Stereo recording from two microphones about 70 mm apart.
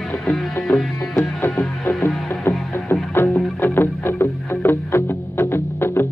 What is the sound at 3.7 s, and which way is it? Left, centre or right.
Music, left.